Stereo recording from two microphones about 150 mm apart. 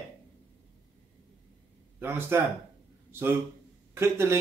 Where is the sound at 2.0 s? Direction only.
15° right (ahead or behind).